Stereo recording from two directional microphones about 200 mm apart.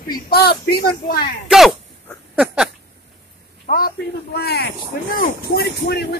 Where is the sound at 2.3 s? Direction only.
Centre (ahead or behind).